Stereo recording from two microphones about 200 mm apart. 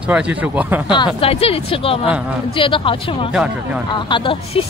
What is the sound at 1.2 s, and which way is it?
Speech, 30° left (ahead or behind).